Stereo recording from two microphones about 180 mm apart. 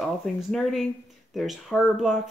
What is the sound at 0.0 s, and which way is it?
Speech, centre (ahead or behind).